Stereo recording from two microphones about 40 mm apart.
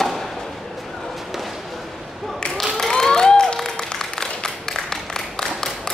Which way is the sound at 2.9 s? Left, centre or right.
Centre.